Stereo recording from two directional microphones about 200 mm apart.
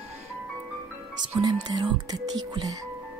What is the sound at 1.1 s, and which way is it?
Music, 20° right (ahead or behind).